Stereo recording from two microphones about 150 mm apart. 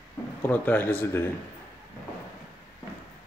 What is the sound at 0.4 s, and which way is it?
Speech, 10° left (ahead or behind).